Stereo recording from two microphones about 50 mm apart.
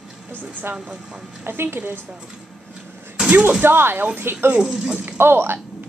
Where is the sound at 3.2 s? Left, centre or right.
Right.